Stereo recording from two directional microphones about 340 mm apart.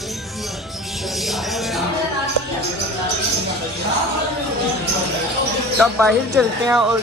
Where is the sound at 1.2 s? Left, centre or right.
Centre.